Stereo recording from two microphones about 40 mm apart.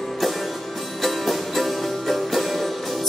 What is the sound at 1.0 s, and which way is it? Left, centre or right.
Music, centre.